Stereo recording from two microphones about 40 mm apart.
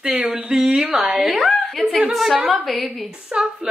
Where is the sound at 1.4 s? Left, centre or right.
Centre.